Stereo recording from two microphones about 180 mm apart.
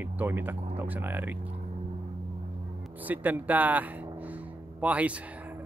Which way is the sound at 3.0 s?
10° right (ahead or behind).